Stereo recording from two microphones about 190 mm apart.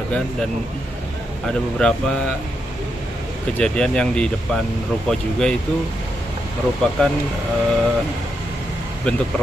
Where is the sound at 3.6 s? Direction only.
5° left (ahead or behind).